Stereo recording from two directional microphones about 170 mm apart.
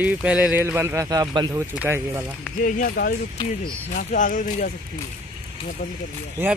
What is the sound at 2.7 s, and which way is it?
Speech, 55° left (ahead or behind).